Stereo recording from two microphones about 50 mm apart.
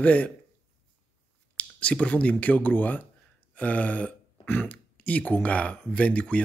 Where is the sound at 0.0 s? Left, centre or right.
Left.